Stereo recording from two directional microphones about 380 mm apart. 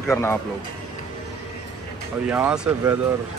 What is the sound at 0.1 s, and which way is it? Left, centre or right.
Speech, centre.